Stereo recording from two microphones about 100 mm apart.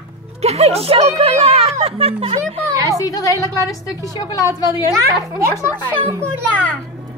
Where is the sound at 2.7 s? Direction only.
35° right (ahead or behind).